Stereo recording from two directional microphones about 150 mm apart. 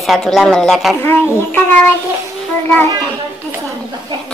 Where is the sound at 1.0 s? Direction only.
10° left (ahead or behind).